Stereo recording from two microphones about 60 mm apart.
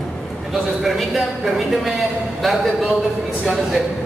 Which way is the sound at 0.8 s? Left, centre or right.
Centre.